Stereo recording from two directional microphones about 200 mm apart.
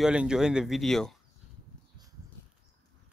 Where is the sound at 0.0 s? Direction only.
5° right (ahead or behind).